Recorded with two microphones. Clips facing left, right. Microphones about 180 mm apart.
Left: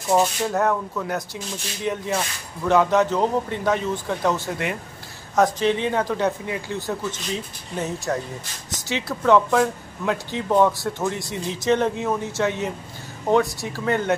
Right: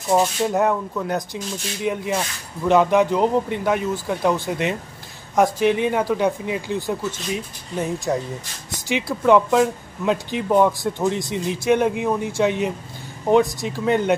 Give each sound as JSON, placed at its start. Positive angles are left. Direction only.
{"t": 0.5, "sound": "speech", "side_deg": -15}